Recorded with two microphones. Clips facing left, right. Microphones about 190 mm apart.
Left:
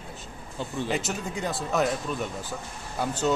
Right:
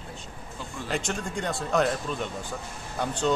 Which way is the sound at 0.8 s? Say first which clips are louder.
Right 1 dB; 5° left (ahead or behind).